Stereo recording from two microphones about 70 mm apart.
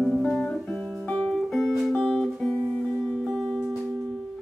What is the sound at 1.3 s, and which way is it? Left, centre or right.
Music, centre.